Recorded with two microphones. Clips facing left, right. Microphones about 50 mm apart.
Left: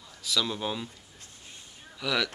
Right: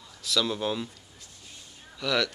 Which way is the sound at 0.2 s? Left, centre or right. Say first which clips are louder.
Right 2 dB; centre.